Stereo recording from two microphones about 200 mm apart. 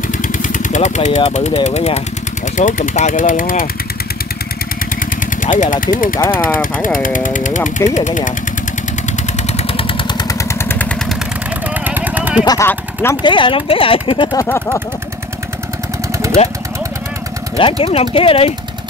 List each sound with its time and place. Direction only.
0.2 s vehicle: 40° left (ahead or behind)
1.3 s speech: 35° left (ahead or behind)
5.4 s speech: 40° left (ahead or behind)
9.6 s vehicle: 30° left (ahead or behind); by 11.1 s 5° left (ahead or behind)
11.8 s vehicle: 10° right (ahead or behind)
12.4 s speech: 15° left (ahead or behind)
13.2 s speech: 25° left (ahead or behind)
14.4 s speech: 10° left (ahead or behind)
17.6 s speech: 25° left (ahead or behind)